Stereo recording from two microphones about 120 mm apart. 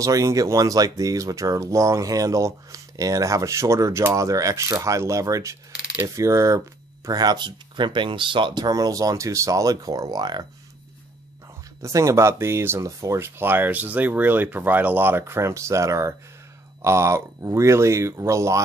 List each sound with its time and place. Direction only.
0.0 s speech: 25° right (ahead or behind)
5.8 s mechanisms: 10° right (ahead or behind)
6.0 s speech: 25° right (ahead or behind)
11.8 s speech: 25° right (ahead or behind)